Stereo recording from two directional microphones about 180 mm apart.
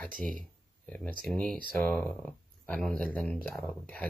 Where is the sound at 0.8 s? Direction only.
5° left (ahead or behind).